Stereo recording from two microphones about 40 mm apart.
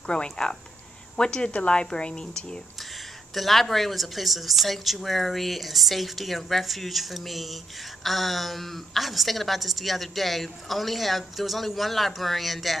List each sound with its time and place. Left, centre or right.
0.0 s speech: left
3.3 s a woman's voice: centre